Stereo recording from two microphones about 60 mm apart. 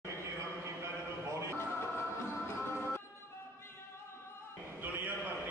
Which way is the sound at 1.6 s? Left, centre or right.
Left.